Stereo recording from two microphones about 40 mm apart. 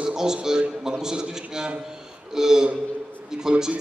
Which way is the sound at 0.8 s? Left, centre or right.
Centre.